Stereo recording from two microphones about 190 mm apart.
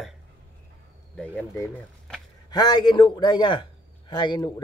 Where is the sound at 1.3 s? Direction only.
10° left (ahead or behind).